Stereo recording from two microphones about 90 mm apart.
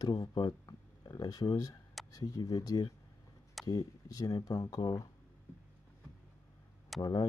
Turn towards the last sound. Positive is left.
turn(degrees=45)  # may be behind; listen again after turning